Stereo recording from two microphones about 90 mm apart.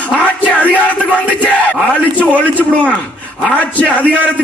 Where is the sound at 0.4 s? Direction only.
15° left (ahead or behind).